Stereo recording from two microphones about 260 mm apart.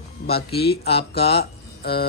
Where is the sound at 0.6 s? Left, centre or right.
Left.